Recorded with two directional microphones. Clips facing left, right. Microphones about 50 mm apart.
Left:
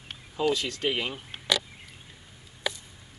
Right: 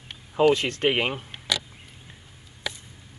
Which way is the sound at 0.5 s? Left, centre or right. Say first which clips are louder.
Right 5 dB; right.